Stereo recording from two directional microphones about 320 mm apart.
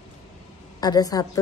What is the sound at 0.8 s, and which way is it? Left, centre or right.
Speech, centre.